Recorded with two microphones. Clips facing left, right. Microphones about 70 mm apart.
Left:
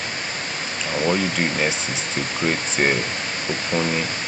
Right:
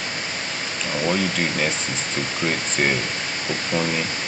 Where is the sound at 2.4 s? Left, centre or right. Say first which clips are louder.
Left 2 dB; left.